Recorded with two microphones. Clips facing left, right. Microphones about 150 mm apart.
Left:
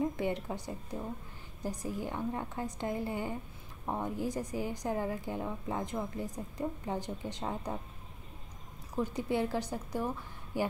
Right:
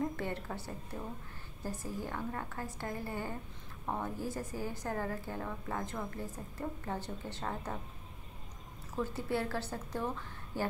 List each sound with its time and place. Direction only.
0.0 s a woman's voice: 15° left (ahead or behind)
8.9 s a woman's voice: 15° left (ahead or behind)